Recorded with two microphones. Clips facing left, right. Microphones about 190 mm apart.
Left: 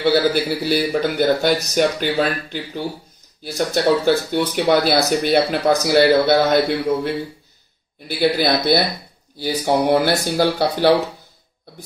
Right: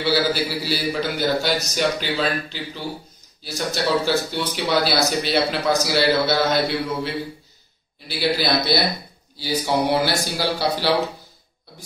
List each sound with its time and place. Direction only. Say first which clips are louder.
0.0 s speech: left 4 dB; 55° left (ahead or behind)
8.1 s speech: left 4 dB; 55° left (ahead or behind)